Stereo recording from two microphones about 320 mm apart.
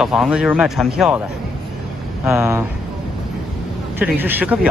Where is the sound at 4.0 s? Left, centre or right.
Centre.